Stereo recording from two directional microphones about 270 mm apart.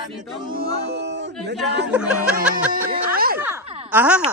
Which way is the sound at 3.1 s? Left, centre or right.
Right.